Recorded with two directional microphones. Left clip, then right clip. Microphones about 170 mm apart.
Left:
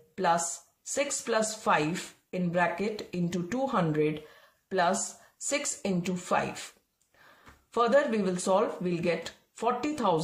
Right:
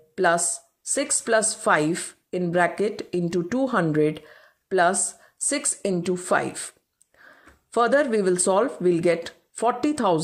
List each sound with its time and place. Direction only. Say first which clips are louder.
0.1 s a sound: right 6 dB; 40° right (ahead or behind)
0.8 s speech: right 5 dB; 35° right (ahead or behind)
7.7 s speech: right 5 dB; 40° right (ahead or behind)